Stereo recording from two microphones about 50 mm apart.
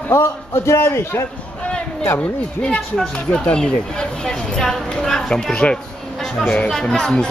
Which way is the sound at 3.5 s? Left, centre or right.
Centre.